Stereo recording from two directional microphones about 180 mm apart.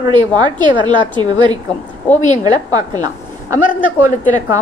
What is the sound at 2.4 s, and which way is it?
Speech, 20° right (ahead or behind).